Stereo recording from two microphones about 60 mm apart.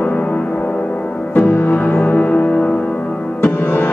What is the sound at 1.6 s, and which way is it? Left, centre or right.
Music, left.